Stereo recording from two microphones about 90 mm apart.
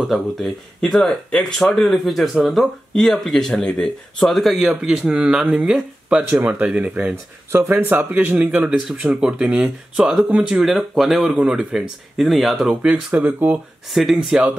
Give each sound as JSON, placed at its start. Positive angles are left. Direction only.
{"t": 0.0, "sound": "speech", "side_deg": 0}
{"t": 12.6, "sound": "speech", "side_deg": -15}
{"t": 13.9, "sound": "speech", "side_deg": -5}